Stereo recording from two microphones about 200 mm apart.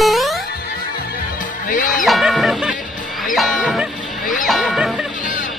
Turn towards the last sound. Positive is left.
turn(degrees=0)  # may be behind; listen again after turning